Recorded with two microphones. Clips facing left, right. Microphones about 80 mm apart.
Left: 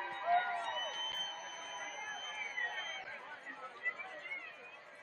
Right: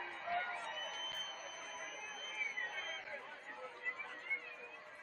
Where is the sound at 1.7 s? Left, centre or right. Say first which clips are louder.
Left 4 dB; left.